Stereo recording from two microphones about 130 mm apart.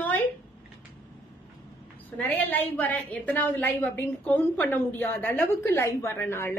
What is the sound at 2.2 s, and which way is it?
A woman's voice, 10° left (ahead or behind).